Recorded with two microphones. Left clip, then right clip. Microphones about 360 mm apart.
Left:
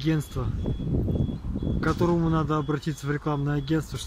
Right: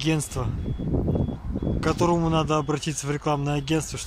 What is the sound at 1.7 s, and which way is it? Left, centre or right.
Speech, centre.